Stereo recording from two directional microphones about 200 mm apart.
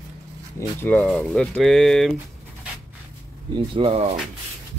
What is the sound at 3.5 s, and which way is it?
Speech, 25° right (ahead or behind).